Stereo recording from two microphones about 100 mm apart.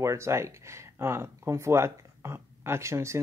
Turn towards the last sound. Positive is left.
turn(degrees=-30)  # may be behind; listen again after turning